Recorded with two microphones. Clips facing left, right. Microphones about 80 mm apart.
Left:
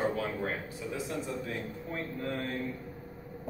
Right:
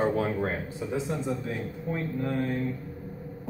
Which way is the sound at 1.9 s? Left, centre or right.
Centre.